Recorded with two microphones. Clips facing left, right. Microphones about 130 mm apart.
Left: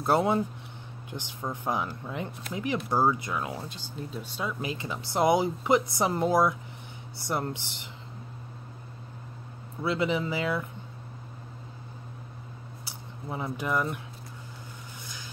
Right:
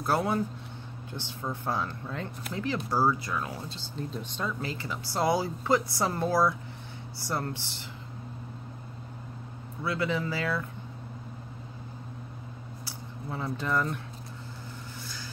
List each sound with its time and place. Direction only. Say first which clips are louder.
0.0 s speech: left 3 dB; 25° left (ahead or behind)
9.8 s speech: left 2 dB; 20° left (ahead or behind)
12.8 s speech: even; 15° left (ahead or behind)